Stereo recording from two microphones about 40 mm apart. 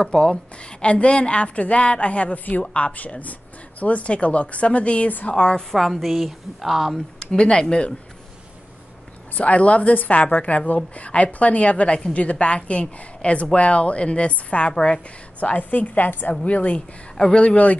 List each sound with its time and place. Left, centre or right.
0.0 s a woman's voice: centre
5.7 s a woman's voice: centre
7.2 s a woman's voice: left
9.4 s a woman's voice: left
17.2 s a woman's voice: left